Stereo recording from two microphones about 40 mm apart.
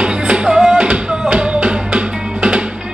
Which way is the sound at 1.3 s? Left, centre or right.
Right.